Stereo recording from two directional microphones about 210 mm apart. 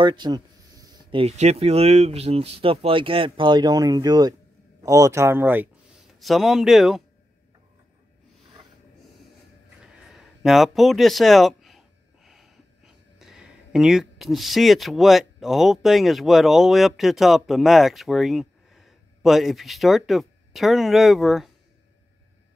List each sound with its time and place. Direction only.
0.0 s speech: 20° right (ahead or behind); by 7.0 s centre (ahead or behind)
10.0 s speech: centre (ahead or behind)